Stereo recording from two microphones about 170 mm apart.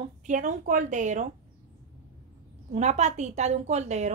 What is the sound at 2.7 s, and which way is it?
A woman's voice, 40° right (ahead or behind).